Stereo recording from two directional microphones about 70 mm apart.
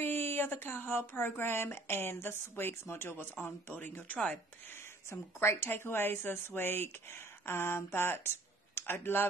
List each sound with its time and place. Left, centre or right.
0.0 s speech: left
5.1 s speech: left